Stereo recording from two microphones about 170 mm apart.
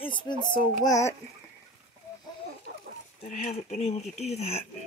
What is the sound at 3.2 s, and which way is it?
Speech, 40° left (ahead or behind).